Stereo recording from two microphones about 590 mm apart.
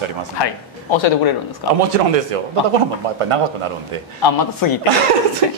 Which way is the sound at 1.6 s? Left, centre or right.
Left.